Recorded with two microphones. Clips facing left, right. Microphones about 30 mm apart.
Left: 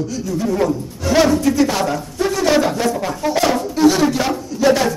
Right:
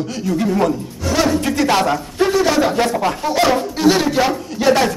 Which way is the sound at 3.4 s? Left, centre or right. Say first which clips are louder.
Left 1 dB; right.